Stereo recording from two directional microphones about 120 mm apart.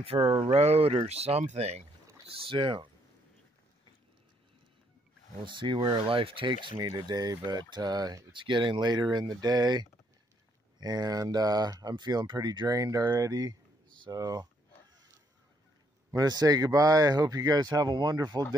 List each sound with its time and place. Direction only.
0.0 s speech: 55° right (ahead or behind)
2.4 s speech: 45° right (ahead or behind)
5.4 s speech: 40° right (ahead or behind)
8.3 s speech: 40° right (ahead or behind)
16.1 s speech: 30° right (ahead or behind)